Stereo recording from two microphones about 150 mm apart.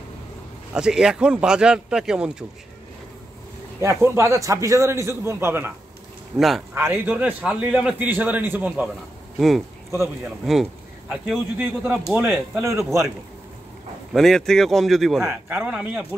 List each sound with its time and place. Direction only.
0.7 s speech: 5° right (ahead or behind)
3.8 s a man's voice: 15° right (ahead or behind)
6.3 s speech: centre (ahead or behind)
6.7 s a man's voice: 15° right (ahead or behind)
10.2 s a man's voice: centre (ahead or behind); by 13.1 s 20° right (ahead or behind)
14.1 s speech: centre (ahead or behind)
15.2 s a man's voice: 15° right (ahead or behind)